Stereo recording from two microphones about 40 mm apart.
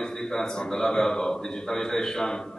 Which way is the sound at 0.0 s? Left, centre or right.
Centre.